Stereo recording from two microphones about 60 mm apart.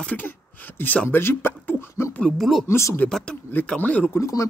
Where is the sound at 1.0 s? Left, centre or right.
Left.